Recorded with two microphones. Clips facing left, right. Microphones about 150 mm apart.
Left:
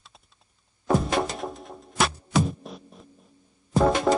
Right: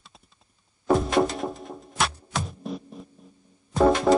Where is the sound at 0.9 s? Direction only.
Centre (ahead or behind).